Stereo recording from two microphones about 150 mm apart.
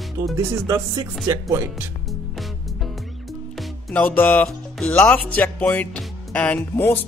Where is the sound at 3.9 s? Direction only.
10° left (ahead or behind).